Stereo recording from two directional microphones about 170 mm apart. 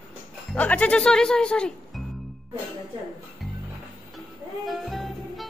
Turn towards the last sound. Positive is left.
turn(degrees=0)  # may be behind; listen again after turning